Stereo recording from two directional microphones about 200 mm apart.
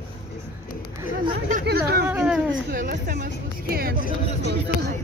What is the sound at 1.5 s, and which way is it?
Chatter, 50° right (ahead or behind).